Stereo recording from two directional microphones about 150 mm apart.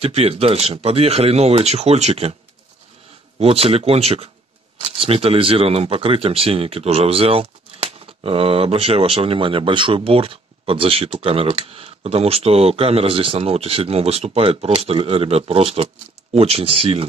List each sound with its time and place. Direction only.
0.0 s speech: 40° right (ahead or behind)
3.3 s speech: 40° right (ahead or behind)